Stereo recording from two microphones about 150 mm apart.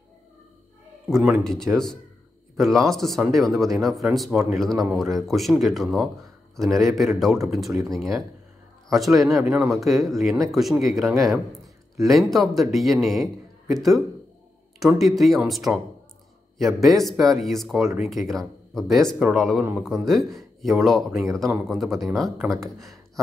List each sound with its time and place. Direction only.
1.1 s a man's voice: centre (ahead or behind)
7.3 s speech: 20° right (ahead or behind)
7.6 s speech: centre (ahead or behind)
16.8 s speech: centre (ahead or behind)